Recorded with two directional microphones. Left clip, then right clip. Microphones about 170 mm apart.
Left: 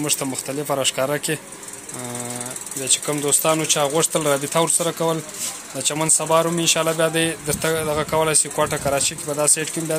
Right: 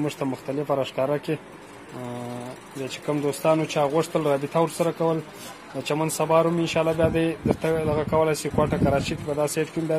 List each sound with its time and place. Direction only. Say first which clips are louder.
0.0 s speech: left 3 dB; 5° right (ahead or behind)
2.8 s speech: left 4 dB; centre (ahead or behind)